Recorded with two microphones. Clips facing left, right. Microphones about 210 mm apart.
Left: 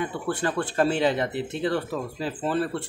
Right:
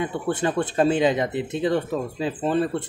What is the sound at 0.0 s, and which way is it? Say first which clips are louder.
Speech: right 3 dB; 20° right (ahead or behind).